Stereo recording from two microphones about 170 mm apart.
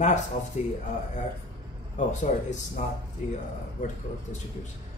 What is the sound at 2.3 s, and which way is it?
Speech, 50° left (ahead or behind).